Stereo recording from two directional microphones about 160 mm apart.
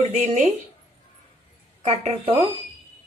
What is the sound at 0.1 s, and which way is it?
Speech, 45° right (ahead or behind).